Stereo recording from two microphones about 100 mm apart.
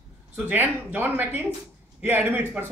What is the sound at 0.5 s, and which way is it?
Speech, 20° right (ahead or behind).